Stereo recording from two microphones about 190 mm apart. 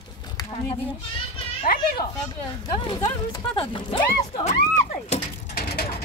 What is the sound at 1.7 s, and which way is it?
Children playing, 50° left (ahead or behind).